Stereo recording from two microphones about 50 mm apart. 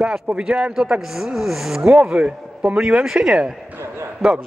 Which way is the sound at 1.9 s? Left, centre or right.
Centre.